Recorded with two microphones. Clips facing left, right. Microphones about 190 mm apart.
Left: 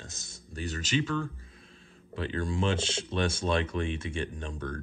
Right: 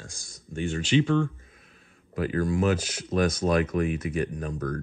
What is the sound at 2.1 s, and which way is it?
Speech, 25° left (ahead or behind).